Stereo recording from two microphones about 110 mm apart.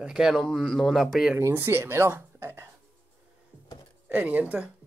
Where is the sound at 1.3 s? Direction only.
20° right (ahead or behind).